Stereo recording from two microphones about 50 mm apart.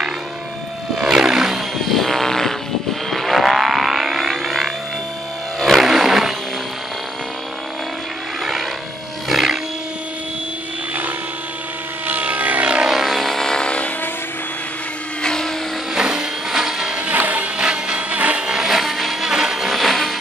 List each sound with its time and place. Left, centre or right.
0.9 s vehicle: centre
1.9 s vehicle: centre
3.1 s alarm: centre
5.6 s music: centre
9.3 s wild animals: centre
12.1 s vehicle: right
12.9 s vehicle: centre
15.2 s vehicle: centre
15.9 s a sound: centre
17.1 s music: right
17.6 s music: centre
18.1 s a sound: right
18.5 s a sound: centre
19.2 s music: centre